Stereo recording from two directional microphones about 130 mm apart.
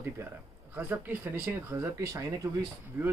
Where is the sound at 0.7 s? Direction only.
15° right (ahead or behind).